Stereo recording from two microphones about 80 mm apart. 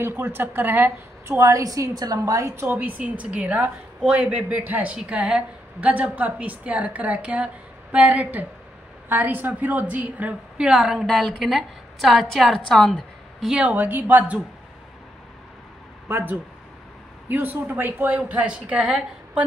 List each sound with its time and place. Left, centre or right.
0.0 s a woman's voice: right
1.4 s a woman's voice: right; by 10.7 s centre
10.7 s a woman's voice: centre
13.6 s a woman's voice: centre
16.1 s a woman's voice: right; by 19.4 s centre